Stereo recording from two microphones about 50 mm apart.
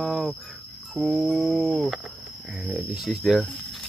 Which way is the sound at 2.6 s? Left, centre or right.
Right.